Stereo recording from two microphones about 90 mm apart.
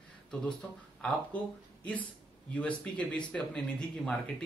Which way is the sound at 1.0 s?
15° left (ahead or behind).